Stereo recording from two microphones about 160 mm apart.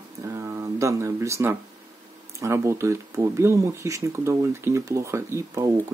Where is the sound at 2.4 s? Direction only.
15° right (ahead or behind).